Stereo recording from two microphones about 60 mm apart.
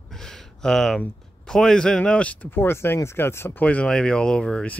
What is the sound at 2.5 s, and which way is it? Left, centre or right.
Speech, left.